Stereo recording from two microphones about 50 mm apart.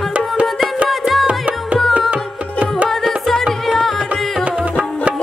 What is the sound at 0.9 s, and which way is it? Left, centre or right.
Music, centre.